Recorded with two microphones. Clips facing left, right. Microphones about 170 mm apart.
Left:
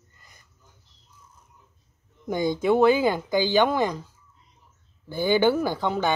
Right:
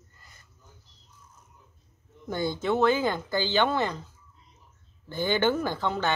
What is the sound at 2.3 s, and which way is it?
Speech, 15° left (ahead or behind).